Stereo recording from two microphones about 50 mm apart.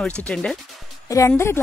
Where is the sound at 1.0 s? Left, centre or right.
Left.